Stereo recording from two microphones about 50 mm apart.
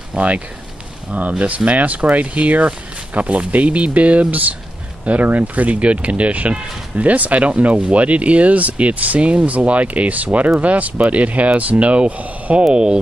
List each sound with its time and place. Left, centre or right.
0.1 s speech: centre
1.4 s speech: right